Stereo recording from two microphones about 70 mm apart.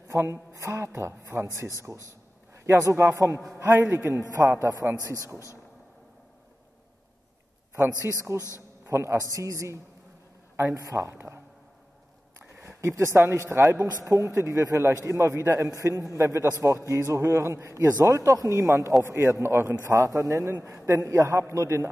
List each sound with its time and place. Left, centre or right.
0.1 s a woman's voice: right
3.3 s a man's voice: right
4.9 s a man's voice: left
7.7 s a man's voice: right
9.3 s a man's voice: right
11.1 s a man's voice: right
12.8 s a man's voice: right
13.1 s a man's voice: right
15.7 s a man's voice: right
19.9 s a man's voice: right